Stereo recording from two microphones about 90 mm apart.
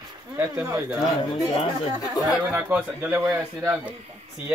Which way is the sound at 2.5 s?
20° right (ahead or behind).